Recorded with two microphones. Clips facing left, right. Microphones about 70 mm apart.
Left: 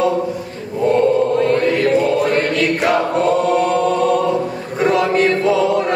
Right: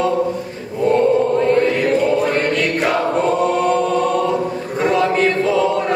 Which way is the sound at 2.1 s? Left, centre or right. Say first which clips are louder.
Left 1 dB; centre.